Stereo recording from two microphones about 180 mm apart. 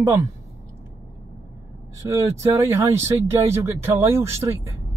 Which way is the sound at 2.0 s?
15° right (ahead or behind).